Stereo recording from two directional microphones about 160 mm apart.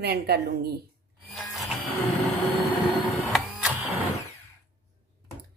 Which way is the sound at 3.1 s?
Centre (ahead or behind).